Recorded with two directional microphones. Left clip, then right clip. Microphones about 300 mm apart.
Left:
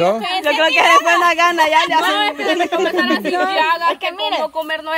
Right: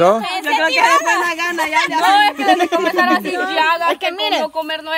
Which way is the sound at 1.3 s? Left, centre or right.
Centre.